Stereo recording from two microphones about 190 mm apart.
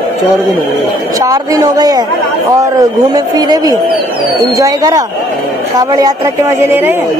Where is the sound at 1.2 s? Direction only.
20° right (ahead or behind).